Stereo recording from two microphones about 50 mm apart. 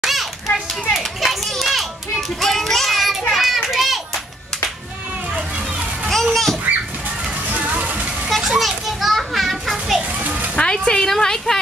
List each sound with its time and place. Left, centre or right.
0.0 s children playing: centre
6.0 s children playing: centre
7.4 s music: right
8.5 s children playing: centre
10.1 s children playing: right
10.5 s a sound: centre
10.9 s a woman's voice: centre